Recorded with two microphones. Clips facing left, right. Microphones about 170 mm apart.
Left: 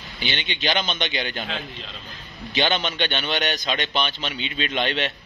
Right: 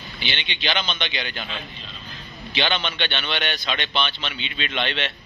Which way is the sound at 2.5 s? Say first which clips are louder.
Left 2 dB; 45° left (ahead or behind).